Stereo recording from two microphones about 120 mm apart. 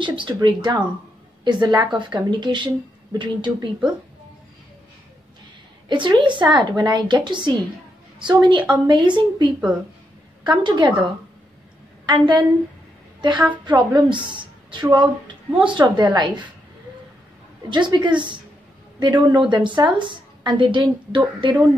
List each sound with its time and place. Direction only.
0.0 s a woman's voice: 40° right (ahead or behind)
5.9 s a woman's voice: 40° right (ahead or behind)
12.1 s a woman's voice: 40° right (ahead or behind)
13.7 s a woman's voice: 40° right (ahead or behind)
17.6 s a woman's voice: 40° right (ahead or behind)